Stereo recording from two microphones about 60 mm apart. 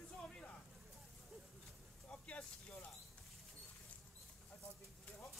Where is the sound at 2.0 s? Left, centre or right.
Left.